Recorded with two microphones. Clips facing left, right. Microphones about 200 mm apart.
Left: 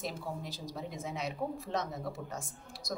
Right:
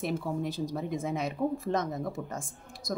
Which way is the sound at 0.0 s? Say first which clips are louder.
Right 8 dB; 55° right (ahead or behind).